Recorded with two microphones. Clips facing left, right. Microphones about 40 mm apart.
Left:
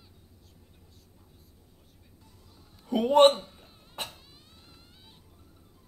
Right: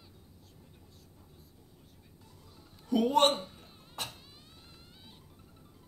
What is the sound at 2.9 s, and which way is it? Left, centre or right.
Speech, left.